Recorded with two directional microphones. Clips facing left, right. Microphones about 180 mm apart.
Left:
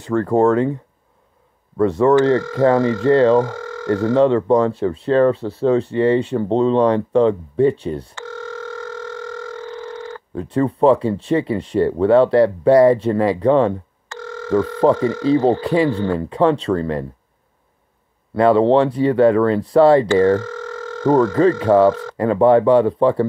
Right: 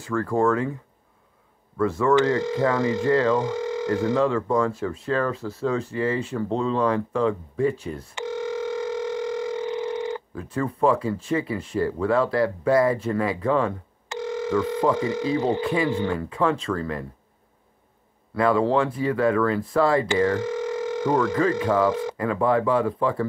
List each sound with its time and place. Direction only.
0.0 s speech: 35° left (ahead or behind)
1.8 s speech: 35° left (ahead or behind)
2.3 s speech: 20° right (ahead or behind)
3.1 s speech: 30° left (ahead or behind)
3.4 s speech: 20° right (ahead or behind)
4.1 s speech: 35° left (ahead or behind)
8.1 s telephone: 15° right (ahead or behind)
10.3 s speech: 35° left (ahead or behind)
14.0 s telephone: 15° right (ahead or behind)
15.0 s speech: 15° right (ahead or behind)
15.6 s speech: 35° left (ahead or behind)
18.3 s speech: 30° left (ahead or behind)
20.3 s telephone: 15° right (ahead or behind)
21.4 s speech: 35° left (ahead or behind)